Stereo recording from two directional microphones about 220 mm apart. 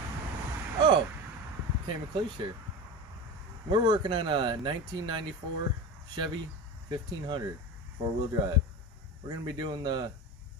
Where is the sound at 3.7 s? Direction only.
20° right (ahead or behind).